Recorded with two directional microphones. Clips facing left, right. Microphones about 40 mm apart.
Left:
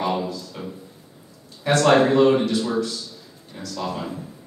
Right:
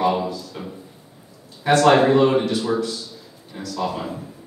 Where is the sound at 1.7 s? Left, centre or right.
Centre.